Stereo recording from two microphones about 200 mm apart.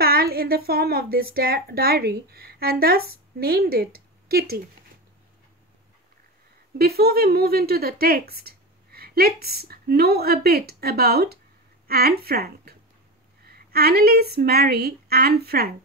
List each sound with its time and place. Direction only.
0.0 s speech: 50° right (ahead or behind)
6.8 s a woman's voice: 50° right (ahead or behind)